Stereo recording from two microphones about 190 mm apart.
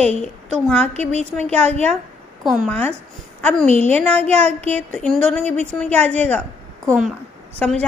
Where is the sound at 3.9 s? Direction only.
5° left (ahead or behind).